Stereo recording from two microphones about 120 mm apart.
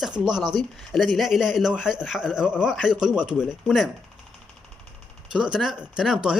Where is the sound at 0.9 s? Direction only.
Centre (ahead or behind).